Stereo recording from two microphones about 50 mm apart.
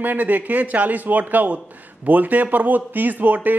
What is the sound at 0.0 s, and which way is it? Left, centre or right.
Speech, right.